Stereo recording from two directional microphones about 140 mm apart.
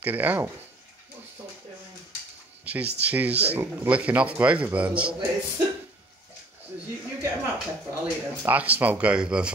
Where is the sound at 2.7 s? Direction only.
10° right (ahead or behind).